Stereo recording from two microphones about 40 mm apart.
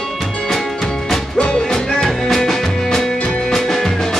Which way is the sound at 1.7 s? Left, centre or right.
Centre.